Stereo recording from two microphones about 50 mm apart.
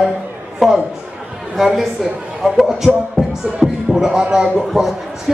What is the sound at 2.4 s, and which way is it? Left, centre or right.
Speech, centre.